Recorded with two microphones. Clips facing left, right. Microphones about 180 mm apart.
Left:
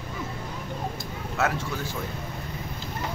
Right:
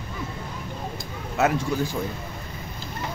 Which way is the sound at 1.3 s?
15° right (ahead or behind).